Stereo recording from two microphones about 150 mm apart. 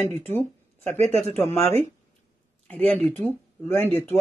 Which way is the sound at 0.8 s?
45° right (ahead or behind).